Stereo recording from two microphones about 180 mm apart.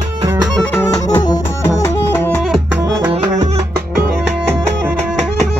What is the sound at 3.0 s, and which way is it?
Music, 20° right (ahead or behind).